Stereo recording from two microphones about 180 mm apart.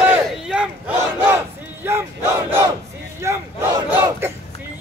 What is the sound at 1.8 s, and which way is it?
Battle cry, 15° right (ahead or behind).